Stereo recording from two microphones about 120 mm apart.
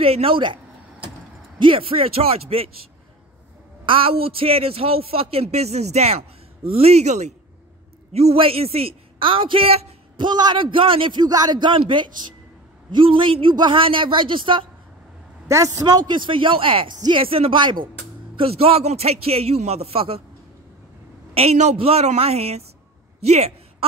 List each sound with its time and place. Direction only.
0.0 s a woman's voice: 50° right (ahead or behind)
1.6 s a woman's voice: 50° right (ahead or behind)
3.8 s a man's voice: 50° right (ahead or behind); by 7.3 s 70° right (ahead or behind)
8.1 s a woman's voice: 55° right (ahead or behind)
15.4 s speech: 25° right (ahead or behind)
15.7 s a woman's voice: 40° right (ahead or behind)
18.4 s a man's voice: 55° right (ahead or behind)
21.4 s a man's voice: 65° right (ahead or behind)
23.2 s a sound: 60° right (ahead or behind)